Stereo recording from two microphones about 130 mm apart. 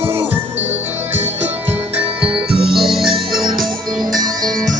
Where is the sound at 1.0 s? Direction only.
20° right (ahead or behind).